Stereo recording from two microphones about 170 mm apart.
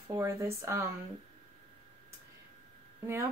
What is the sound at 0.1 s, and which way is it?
Speech, 15° right (ahead or behind).